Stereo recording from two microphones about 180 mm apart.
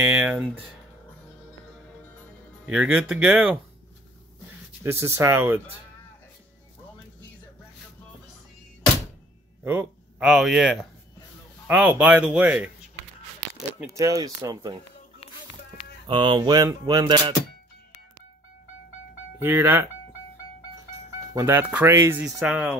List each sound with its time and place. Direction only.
0.0 s speech: 5° right (ahead or behind)
2.6 s speech: 5° right (ahead or behind)
4.8 s speech: 15° right (ahead or behind)
9.7 s speech: 5° right (ahead or behind)
13.7 s speech: 15° right (ahead or behind)
16.1 s a sound: 25° right (ahead or behind)
19.4 s speech: 10° right (ahead or behind)
21.3 s speech: 15° right (ahead or behind)
22.2 s speech: centre (ahead or behind)